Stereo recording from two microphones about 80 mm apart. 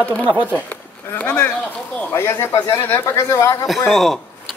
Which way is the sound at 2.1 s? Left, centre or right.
Left.